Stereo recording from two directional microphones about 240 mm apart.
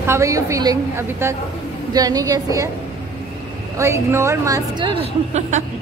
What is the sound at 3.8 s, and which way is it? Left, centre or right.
A woman's voice, centre.